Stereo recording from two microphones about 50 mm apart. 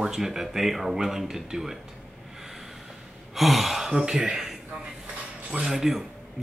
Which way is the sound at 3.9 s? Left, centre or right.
Centre.